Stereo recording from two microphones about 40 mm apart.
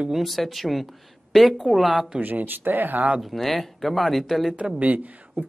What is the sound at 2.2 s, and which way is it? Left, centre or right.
Speech, right.